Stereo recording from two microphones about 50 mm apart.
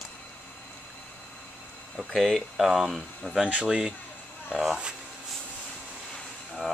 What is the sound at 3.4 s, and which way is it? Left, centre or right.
Speech, centre.